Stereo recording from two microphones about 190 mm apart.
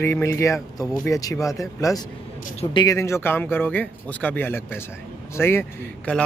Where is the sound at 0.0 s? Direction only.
15° left (ahead or behind).